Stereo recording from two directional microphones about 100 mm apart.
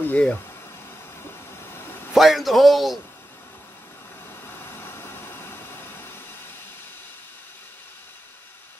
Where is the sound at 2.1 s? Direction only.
Centre (ahead or behind).